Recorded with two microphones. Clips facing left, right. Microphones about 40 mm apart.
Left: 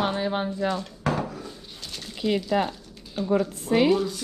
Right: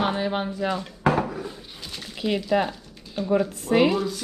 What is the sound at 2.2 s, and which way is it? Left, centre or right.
Speech, centre.